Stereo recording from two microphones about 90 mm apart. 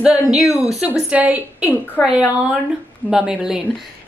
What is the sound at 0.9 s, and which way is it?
Speech, 15° right (ahead or behind).